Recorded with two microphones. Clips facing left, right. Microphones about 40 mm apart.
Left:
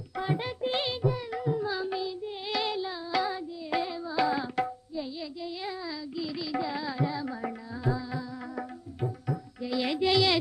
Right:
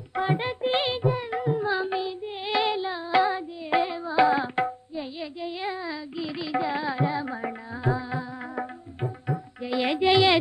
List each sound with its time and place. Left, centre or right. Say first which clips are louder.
0.1 s music: right 5 dB; right